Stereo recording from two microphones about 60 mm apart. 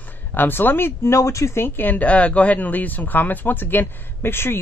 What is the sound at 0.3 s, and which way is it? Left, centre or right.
Speech, left.